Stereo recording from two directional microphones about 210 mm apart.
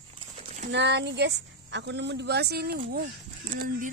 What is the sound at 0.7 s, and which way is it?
Speech, 55° right (ahead or behind).